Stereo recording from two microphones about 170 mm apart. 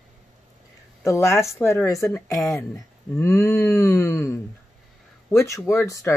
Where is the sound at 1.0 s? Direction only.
15° left (ahead or behind).